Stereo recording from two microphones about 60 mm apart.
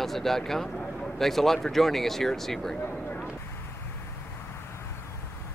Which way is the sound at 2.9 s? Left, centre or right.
Left.